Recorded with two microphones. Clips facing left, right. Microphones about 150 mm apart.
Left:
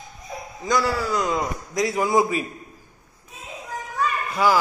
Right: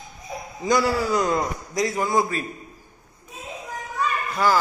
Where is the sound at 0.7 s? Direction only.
5° right (ahead or behind).